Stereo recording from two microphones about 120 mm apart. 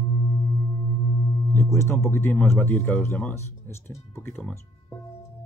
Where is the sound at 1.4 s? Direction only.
20° left (ahead or behind).